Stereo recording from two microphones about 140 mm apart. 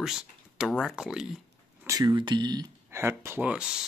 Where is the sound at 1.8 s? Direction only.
30° right (ahead or behind).